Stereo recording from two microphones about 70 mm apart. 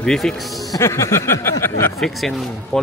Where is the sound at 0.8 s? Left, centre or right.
Left.